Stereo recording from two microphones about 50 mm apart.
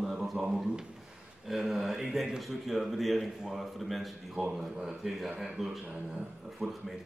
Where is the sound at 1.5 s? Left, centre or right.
Centre.